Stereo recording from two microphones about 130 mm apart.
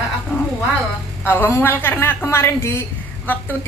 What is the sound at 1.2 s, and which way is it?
A woman's voice, 15° left (ahead or behind).